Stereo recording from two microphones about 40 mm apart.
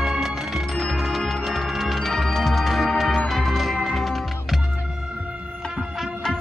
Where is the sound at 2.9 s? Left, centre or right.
Centre.